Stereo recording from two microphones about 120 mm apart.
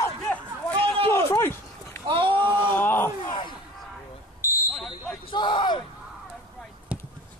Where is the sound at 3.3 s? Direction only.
40° left (ahead or behind).